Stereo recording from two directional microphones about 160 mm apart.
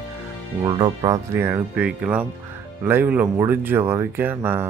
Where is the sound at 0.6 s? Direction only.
25° right (ahead or behind).